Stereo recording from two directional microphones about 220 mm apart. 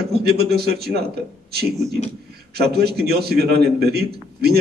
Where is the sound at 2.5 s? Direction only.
45° right (ahead or behind).